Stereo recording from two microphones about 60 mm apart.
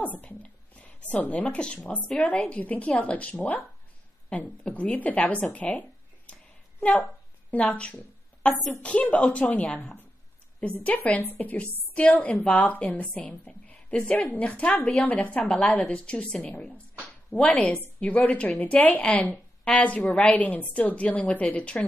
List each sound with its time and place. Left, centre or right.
0.0 s a sound: left
1.1 s a woman's voice: left
17.5 s a woman's voice: left